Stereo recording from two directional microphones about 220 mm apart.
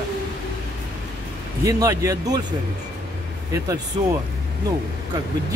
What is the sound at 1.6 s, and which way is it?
Speech, 15° right (ahead or behind).